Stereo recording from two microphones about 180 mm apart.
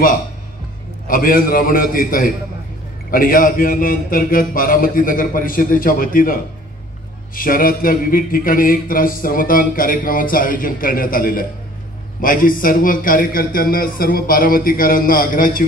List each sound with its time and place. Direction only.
1.0 s a man's voice: 50° left (ahead or behind)